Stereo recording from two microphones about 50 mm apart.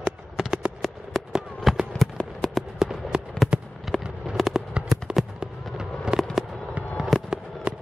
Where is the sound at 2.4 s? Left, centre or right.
Centre.